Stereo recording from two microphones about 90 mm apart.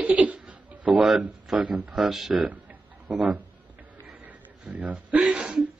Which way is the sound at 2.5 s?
15° right (ahead or behind).